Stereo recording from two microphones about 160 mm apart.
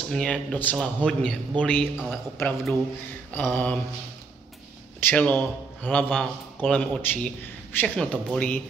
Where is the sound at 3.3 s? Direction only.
10° left (ahead or behind).